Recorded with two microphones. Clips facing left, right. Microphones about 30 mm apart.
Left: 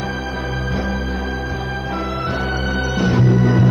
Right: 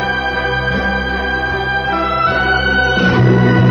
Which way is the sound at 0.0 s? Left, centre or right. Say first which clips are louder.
Right 8 dB; right.